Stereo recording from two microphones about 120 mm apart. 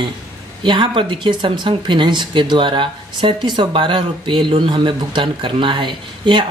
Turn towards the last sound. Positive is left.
turn(degrees=-40)  # may be behind; listen again after turning